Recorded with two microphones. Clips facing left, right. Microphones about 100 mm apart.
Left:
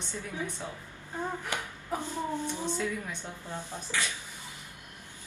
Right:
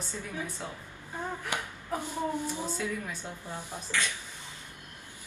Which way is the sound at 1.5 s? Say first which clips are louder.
Even; 15° right (ahead or behind).